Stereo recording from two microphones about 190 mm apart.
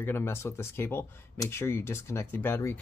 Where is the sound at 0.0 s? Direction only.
10° left (ahead or behind).